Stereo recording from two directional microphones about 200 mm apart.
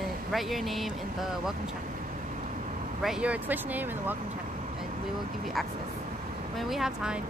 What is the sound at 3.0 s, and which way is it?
Speech, 5° right (ahead or behind).